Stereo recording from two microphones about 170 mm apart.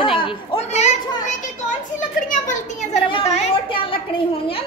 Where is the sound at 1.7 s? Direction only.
50° left (ahead or behind).